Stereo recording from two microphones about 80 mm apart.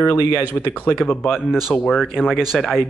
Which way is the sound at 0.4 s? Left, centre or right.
Right.